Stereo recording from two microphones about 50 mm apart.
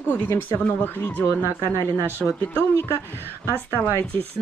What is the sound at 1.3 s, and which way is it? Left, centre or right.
Speech, left.